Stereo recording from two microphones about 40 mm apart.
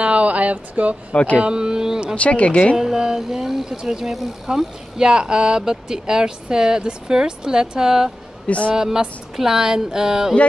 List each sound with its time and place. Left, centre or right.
0.0 s a sound: right
1.4 s speech: right
2.1 s speech: left
2.8 s a woman's voice: centre